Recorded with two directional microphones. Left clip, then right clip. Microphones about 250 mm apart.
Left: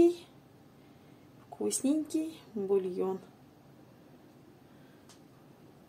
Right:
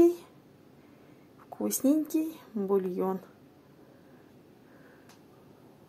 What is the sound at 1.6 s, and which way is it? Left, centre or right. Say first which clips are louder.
Speech: right 4 dB; centre.